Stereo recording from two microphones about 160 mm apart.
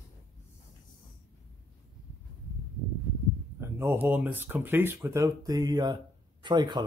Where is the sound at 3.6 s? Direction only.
15° right (ahead or behind).